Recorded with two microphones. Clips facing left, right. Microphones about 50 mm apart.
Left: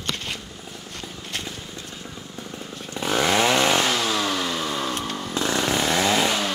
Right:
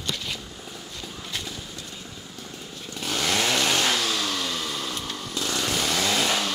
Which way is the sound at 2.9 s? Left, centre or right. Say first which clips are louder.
Left 5 dB; left.